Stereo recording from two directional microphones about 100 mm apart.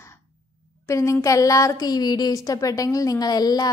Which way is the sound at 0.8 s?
30° left (ahead or behind).